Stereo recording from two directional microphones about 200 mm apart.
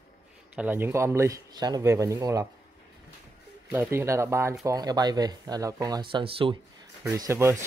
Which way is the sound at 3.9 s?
15° right (ahead or behind).